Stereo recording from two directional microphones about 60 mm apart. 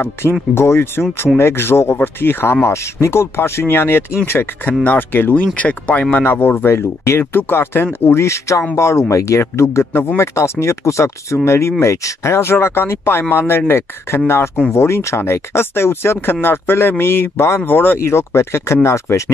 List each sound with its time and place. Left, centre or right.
0.0 s speech: left
6.2 s speech: left
18.0 s speech: left